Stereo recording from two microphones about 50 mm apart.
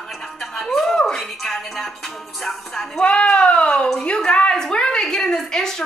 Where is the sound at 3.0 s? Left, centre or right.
Left.